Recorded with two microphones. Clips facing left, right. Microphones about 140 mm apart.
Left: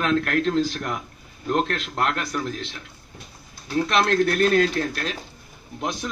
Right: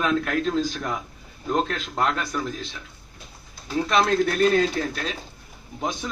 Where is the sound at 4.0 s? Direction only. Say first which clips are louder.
Even; centre (ahead or behind).